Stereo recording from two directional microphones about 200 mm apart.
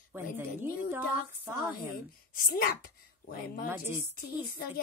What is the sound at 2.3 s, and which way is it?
A woman's voice, 45° left (ahead or behind).